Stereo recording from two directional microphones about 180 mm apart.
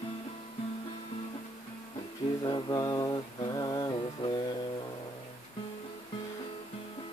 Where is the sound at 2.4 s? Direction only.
20° left (ahead or behind).